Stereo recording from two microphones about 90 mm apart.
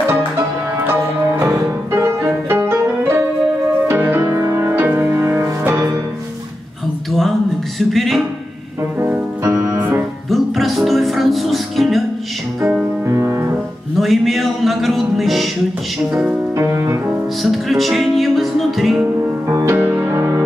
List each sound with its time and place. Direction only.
0.7 s music: 25° right (ahead or behind)
7.1 s a sound: 5° left (ahead or behind)
9.4 s keyboard: 35° right (ahead or behind)
9.8 s music: 20° right (ahead or behind)
10.3 s music: centre (ahead or behind)
13.0 s music: 30° right (ahead or behind)
13.9 s music: centre (ahead or behind)
16.5 s music: 30° right (ahead or behind)
17.4 s music: centre (ahead or behind)
19.4 s music: 30° right (ahead or behind)